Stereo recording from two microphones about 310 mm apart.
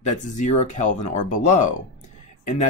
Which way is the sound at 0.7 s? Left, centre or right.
Left.